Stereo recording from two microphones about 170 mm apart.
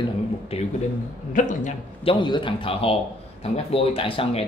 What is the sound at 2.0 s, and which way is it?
A man's voice, 25° left (ahead or behind).